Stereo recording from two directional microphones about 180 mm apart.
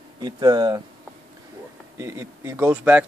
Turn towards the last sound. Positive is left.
turn(degrees=-10)  # may be behind; listen again after turning